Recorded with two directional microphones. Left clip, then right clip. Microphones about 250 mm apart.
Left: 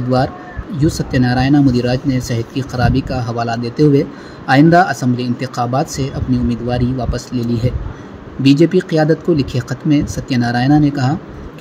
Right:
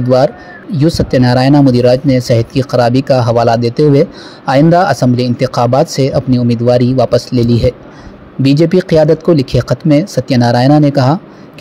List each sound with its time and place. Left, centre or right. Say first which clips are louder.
0.7 s speech: right 6 dB; right